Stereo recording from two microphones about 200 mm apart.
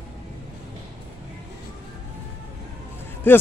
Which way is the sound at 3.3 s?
10° left (ahead or behind).